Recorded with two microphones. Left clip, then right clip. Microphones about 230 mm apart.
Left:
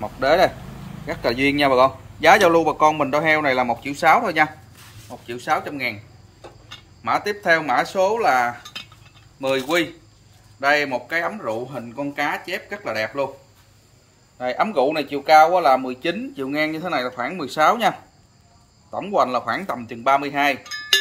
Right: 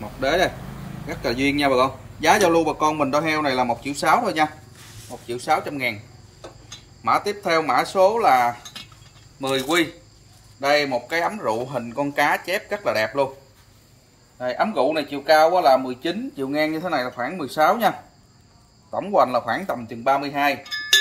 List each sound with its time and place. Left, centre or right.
0.2 s speech: centre
7.0 s speech: centre
14.5 s speech: centre